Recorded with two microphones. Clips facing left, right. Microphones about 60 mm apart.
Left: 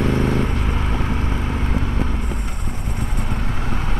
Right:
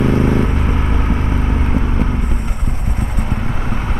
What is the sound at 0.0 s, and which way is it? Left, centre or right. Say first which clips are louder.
Vehicle: right 5 dB; centre.